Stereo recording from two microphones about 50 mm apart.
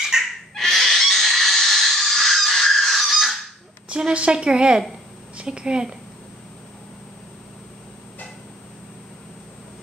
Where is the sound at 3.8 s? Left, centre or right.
Centre.